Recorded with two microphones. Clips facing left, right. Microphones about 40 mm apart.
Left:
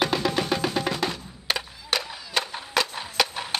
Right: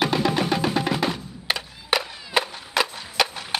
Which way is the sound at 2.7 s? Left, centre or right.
Centre.